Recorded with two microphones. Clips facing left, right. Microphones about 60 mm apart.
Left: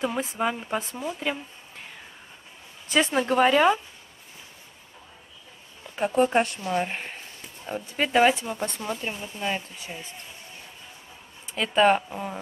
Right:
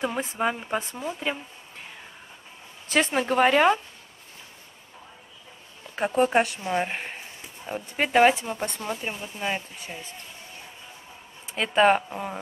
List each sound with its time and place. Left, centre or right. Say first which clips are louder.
0.0 s speech: even; centre
3.1 s speech: even; centre
5.9 s speech: even; centre
8.5 s speech: even; centre
11.5 s speech: even; centre